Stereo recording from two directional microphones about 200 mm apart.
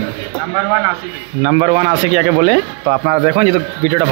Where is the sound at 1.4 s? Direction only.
35° right (ahead or behind).